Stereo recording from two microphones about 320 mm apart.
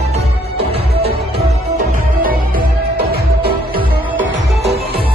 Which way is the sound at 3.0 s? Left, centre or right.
Right.